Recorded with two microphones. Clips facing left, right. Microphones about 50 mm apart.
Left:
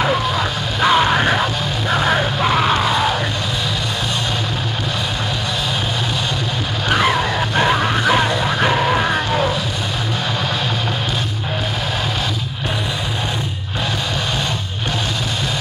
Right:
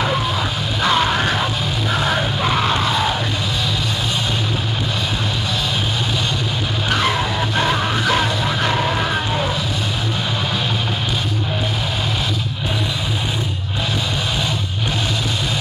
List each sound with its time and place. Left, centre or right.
0.7 s music: centre
6.9 s music: centre